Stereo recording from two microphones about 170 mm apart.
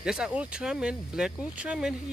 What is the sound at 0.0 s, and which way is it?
Speech, 5° right (ahead or behind).